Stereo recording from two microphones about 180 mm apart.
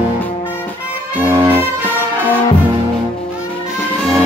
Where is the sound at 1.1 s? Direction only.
10° right (ahead or behind).